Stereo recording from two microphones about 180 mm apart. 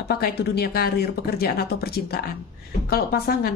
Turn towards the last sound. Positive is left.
turn(degrees=60)  # may be behind; listen again after turning